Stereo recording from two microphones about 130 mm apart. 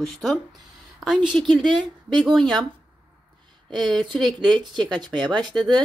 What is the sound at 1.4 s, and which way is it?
Speech, 5° left (ahead or behind).